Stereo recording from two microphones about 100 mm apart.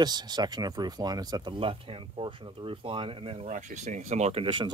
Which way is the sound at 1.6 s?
65° right (ahead or behind).